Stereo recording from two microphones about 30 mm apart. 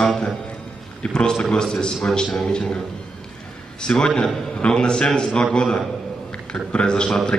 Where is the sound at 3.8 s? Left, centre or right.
Left.